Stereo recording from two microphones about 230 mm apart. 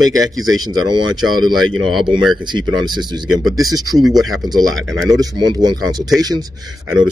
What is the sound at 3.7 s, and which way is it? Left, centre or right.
Speech, centre.